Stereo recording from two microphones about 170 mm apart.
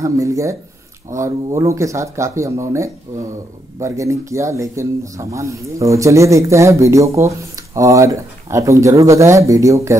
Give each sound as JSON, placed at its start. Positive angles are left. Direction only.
{"t": 0.0, "sound": "speech", "side_deg": -20}